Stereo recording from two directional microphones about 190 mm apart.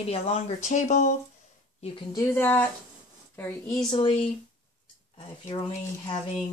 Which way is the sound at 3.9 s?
30° left (ahead or behind).